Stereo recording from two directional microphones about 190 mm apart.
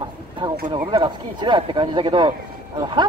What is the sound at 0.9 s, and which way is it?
A man's voice, 25° right (ahead or behind).